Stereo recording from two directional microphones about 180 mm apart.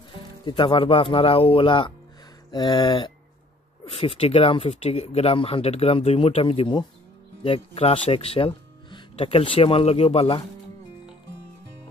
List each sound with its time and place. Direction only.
0.5 s speech: 30° left (ahead or behind)